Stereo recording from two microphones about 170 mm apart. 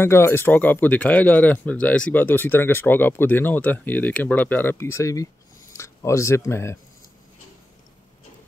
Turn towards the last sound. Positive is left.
turn(degrees=15)  # may be behind; listen again after turning